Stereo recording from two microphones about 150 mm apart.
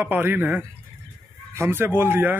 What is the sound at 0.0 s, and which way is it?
Speech, 15° right (ahead or behind).